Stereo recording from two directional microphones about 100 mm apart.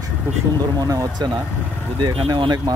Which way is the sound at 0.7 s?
35° right (ahead or behind).